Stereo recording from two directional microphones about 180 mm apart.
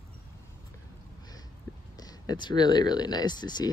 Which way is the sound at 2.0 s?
20° left (ahead or behind).